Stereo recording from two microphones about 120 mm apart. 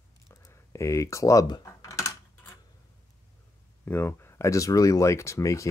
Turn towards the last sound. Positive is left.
turn(degrees=25)  # may be behind; listen again after turning